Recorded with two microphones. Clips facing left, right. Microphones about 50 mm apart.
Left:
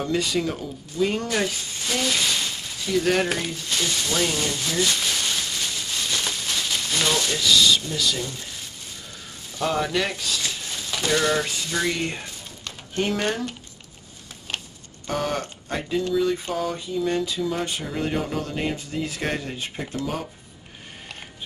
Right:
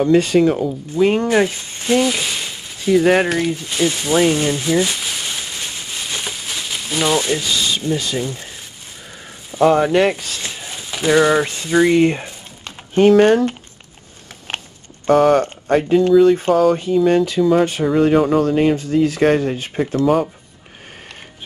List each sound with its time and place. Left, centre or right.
0.1 s speech: right
2.0 s a sound: centre
2.9 s speech: right
3.3 s speech: centre
3.5 s speech: centre
9.5 s speech: right
10.4 s a sound: right
13.0 s speech: right
14.5 s a sound: right
15.0 s speech: right
18.5 s speech: right
18.8 s speech: right
19.5 s speech: right